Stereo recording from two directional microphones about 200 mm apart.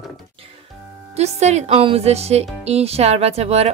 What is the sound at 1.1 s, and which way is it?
A woman's voice, 35° right (ahead or behind).